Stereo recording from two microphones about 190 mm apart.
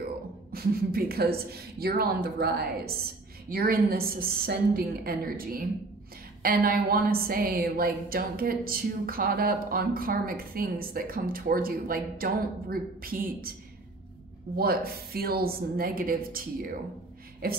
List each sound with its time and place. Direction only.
0.5 s a woman's voice: 55° right (ahead or behind)
14.6 s a woman's voice: 55° right (ahead or behind)